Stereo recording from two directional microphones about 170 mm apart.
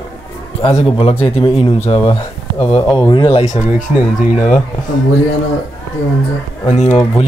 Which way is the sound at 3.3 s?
45° left (ahead or behind).